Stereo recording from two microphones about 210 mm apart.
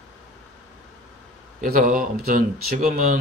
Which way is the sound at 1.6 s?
40° right (ahead or behind).